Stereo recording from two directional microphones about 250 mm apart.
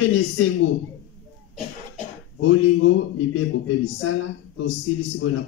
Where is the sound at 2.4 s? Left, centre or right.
Left.